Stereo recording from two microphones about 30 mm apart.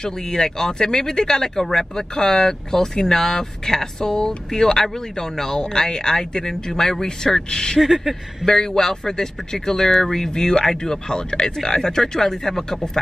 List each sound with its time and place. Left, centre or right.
0.0 s speech: centre
7.8 s a sound: centre
8.5 s speech: centre
10.3 s speech: left